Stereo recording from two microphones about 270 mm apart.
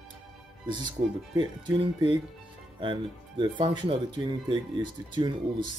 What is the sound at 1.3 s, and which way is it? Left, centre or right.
Speech, centre.